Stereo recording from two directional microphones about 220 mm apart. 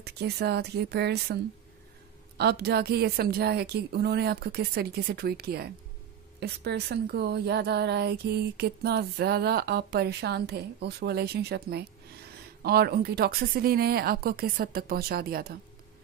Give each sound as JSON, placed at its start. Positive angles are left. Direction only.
{"t": 0.0, "sound": "speech", "side_deg": -45}